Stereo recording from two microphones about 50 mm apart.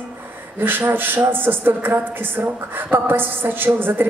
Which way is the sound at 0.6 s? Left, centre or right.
Right.